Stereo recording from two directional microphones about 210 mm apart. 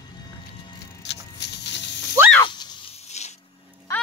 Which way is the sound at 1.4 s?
55° left (ahead or behind).